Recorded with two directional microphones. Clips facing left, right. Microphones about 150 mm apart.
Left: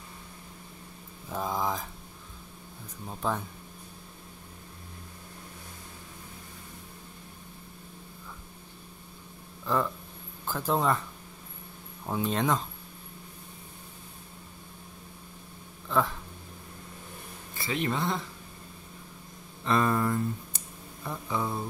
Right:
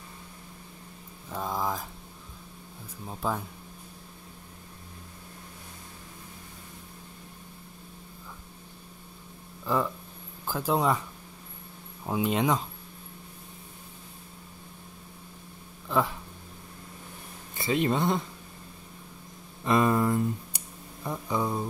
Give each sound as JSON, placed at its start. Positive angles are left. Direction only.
{"t": 1.3, "sound": "a sound", "side_deg": 0}
{"t": 3.1, "sound": "speech", "side_deg": -5}
{"t": 9.7, "sound": "speech", "side_deg": -10}
{"t": 12.1, "sound": "speech", "side_deg": -10}
{"t": 15.9, "sound": "speech", "side_deg": -10}
{"t": 17.6, "sound": "speech", "side_deg": -20}
{"t": 19.6, "sound": "speech", "side_deg": -15}